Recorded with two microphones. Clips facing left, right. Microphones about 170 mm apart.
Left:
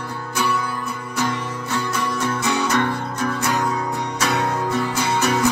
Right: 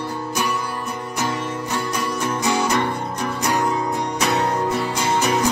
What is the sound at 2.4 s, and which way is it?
Music, 15° right (ahead or behind).